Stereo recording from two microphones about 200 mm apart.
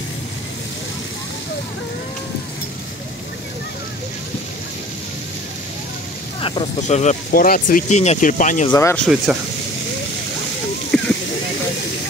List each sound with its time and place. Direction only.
6.4 s speech: 30° left (ahead or behind)
8.6 s speech: 15° left (ahead or behind)
9.0 s speech: centre (ahead or behind)